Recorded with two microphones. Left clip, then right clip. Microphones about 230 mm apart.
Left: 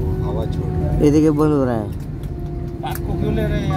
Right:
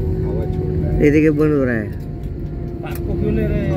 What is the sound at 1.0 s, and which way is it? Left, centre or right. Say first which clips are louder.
Speech: right 1 dB; left.